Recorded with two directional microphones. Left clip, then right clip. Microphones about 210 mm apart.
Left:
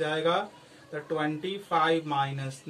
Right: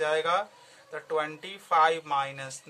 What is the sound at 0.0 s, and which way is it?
Speech, 40° right (ahead or behind).